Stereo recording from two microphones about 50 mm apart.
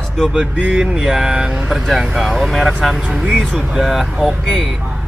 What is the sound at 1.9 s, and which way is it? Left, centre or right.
Speech, centre.